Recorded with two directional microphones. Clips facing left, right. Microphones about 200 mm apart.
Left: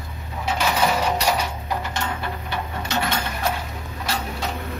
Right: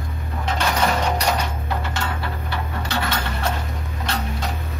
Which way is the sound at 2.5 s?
15° left (ahead or behind).